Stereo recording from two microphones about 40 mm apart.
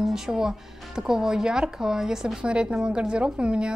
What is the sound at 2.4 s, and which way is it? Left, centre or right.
A woman's voice, right.